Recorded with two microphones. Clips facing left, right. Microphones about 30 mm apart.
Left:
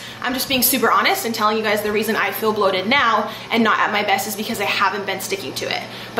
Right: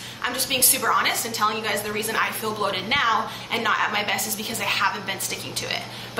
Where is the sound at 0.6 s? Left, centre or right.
Left.